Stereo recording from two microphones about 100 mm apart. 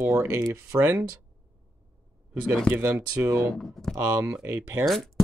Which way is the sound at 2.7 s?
25° right (ahead or behind).